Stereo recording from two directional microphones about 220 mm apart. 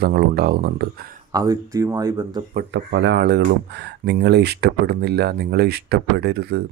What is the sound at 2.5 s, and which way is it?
Speech, 55° right (ahead or behind).